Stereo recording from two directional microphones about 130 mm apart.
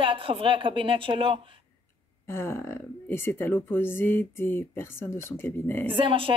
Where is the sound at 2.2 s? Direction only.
20° left (ahead or behind).